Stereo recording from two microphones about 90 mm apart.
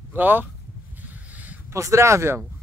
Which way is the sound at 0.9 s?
20° right (ahead or behind).